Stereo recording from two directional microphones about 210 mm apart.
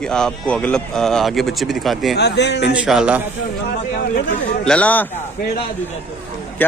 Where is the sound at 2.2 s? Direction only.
55° left (ahead or behind).